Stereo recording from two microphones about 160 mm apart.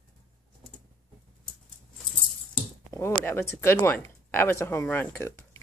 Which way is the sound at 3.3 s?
15° left (ahead or behind).